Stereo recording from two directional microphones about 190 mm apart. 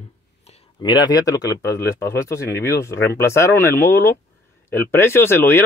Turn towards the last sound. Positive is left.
turn(degrees=10)  # may be behind; listen again after turning